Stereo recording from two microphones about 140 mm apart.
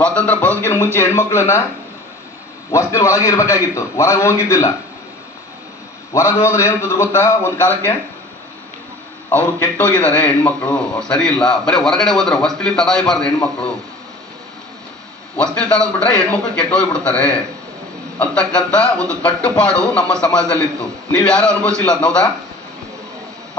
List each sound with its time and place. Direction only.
0.0 s a man's voice: 10° left (ahead or behind)
2.7 s a man's voice: 20° left (ahead or behind)
6.1 s a man's voice: 20° left (ahead or behind)
9.3 s a man's voice: 10° left (ahead or behind)
15.3 s a man's voice: 5° left (ahead or behind)